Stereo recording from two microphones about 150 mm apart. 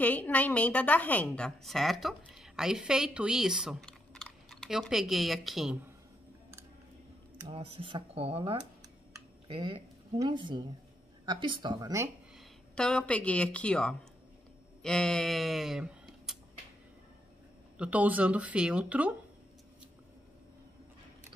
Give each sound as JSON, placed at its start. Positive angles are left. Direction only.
{"t": 0.0, "sound": "a woman's voice", "side_deg": 10}
{"t": 7.4, "sound": "speech", "side_deg": -35}
{"t": 12.7, "sound": "speech", "side_deg": 5}
{"t": 17.7, "sound": "speech", "side_deg": -10}